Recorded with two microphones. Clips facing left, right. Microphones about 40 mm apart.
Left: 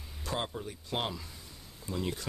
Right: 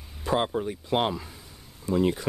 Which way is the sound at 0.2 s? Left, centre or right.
Right.